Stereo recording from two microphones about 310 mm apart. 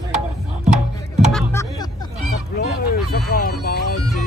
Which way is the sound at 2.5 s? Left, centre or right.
Left.